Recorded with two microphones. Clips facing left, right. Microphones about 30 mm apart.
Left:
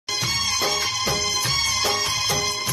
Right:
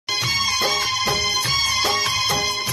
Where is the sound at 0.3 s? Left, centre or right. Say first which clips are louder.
Right 3 dB; centre.